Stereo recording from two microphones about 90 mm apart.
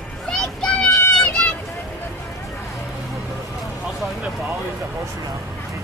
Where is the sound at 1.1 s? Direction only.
10° left (ahead or behind).